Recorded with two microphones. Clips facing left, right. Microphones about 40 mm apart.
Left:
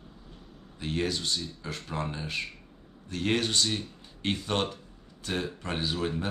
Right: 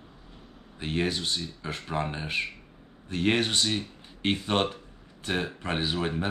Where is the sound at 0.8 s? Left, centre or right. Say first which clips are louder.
Right 2 dB; right.